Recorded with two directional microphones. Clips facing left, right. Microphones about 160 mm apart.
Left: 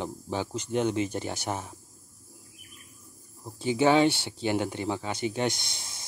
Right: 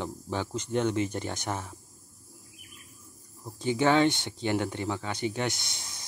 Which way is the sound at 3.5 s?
10° left (ahead or behind).